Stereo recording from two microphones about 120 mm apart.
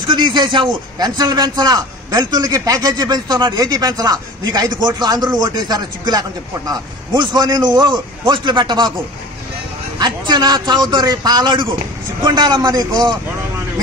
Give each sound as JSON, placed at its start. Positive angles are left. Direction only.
{"t": 0.0, "sound": "a man's voice", "side_deg": -40}
{"t": 9.9, "sound": "a man's voice", "side_deg": -35}